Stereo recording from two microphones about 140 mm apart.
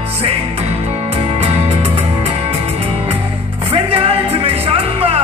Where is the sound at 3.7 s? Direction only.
40° right (ahead or behind).